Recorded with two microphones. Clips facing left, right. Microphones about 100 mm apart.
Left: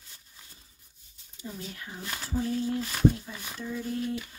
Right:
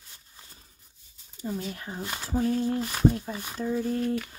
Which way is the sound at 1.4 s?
35° right (ahead or behind).